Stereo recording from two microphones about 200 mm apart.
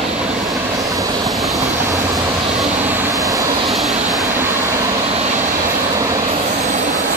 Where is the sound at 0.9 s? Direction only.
15° right (ahead or behind).